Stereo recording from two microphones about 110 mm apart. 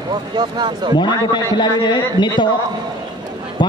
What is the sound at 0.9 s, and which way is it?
A man's voice, 45° left (ahead or behind).